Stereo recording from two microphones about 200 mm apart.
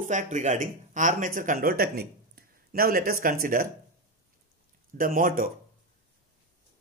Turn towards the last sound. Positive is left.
turn(degrees=-45)  # may be behind; listen again after turning